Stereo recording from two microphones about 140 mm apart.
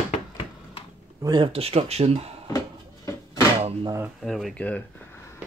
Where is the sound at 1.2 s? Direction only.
35° right (ahead or behind).